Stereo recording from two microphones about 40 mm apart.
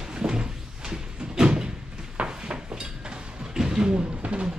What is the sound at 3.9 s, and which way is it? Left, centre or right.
Drum, right.